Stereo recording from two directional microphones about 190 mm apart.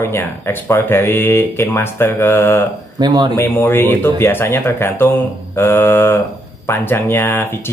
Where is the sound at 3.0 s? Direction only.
20° right (ahead or behind).